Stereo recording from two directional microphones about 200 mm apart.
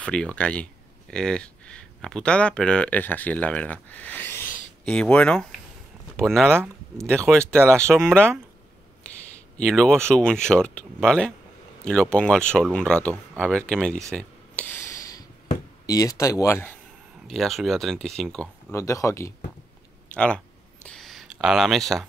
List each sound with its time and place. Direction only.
0.0 s speech: 5° left (ahead or behind)
6.5 s speech: 10° right (ahead or behind)
7.2 s speech: 5° left (ahead or behind)
9.0 s a sound: 5° left (ahead or behind)
9.6 s speech: 5° left (ahead or behind)
13.4 s a sound: 5° left (ahead or behind)
15.9 s speech: 15° left (ahead or behind)
17.3 s speech: centre (ahead or behind)
20.2 s a sound: 5° left (ahead or behind)